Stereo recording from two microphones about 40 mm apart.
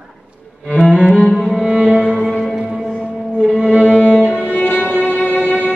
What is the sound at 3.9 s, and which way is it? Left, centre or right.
Violin, left.